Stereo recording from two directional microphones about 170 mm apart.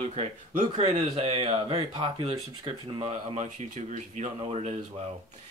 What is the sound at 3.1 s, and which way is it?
Speech, 40° right (ahead or behind).